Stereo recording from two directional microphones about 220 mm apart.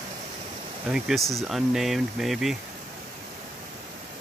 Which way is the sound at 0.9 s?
Centre (ahead or behind).